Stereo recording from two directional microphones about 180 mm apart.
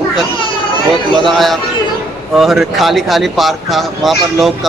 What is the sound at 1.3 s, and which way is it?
Speech, centre (ahead or behind).